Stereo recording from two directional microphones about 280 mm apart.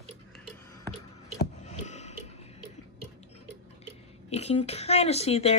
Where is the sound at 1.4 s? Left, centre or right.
Left.